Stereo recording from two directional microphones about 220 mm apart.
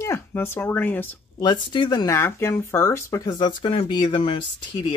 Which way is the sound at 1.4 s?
20° left (ahead or behind).